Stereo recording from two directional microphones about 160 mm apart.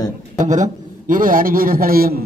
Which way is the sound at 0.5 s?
50° right (ahead or behind).